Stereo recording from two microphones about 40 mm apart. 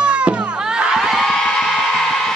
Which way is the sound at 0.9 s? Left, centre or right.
Centre.